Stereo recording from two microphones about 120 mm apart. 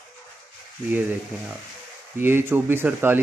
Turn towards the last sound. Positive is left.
turn(degrees=-15)  # may be behind; listen again after turning